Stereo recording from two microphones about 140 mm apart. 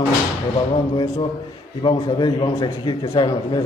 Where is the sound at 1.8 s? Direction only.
35° left (ahead or behind).